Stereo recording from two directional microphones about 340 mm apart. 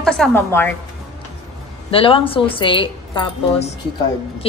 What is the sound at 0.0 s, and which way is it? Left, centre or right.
Speech, centre.